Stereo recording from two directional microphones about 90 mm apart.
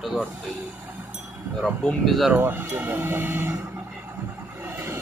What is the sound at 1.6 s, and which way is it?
Speech, 5° left (ahead or behind).